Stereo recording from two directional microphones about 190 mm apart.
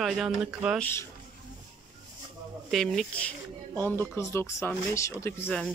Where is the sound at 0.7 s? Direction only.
10° left (ahead or behind).